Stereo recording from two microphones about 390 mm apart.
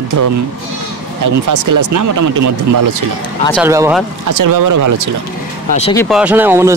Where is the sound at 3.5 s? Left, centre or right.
Centre.